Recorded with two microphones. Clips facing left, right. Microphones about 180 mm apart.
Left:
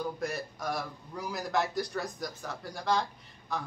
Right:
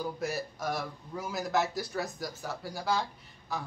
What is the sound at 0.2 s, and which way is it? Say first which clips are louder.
A man's voice: right 1 dB; 5° right (ahead or behind).